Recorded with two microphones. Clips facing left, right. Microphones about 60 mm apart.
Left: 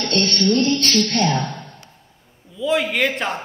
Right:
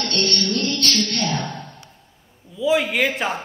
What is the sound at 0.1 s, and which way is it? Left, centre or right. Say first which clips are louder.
A woman's voice: left 6 dB; left.